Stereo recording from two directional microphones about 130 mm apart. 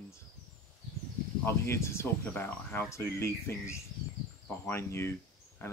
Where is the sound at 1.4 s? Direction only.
20° left (ahead or behind).